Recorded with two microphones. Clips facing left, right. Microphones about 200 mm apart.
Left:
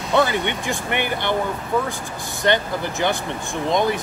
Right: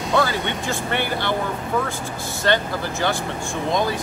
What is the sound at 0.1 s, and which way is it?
Speech, 20° left (ahead or behind).